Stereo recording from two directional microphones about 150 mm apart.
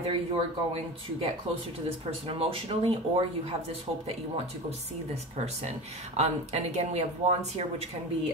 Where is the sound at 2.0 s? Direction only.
40° right (ahead or behind).